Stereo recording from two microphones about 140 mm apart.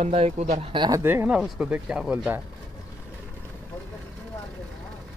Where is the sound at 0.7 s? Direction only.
35° right (ahead or behind).